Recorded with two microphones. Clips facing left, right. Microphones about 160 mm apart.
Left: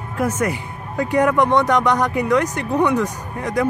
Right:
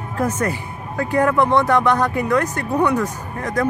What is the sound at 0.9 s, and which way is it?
Speech, 15° left (ahead or behind).